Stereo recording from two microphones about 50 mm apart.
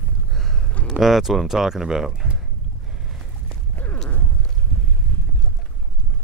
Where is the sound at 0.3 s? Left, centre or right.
Centre.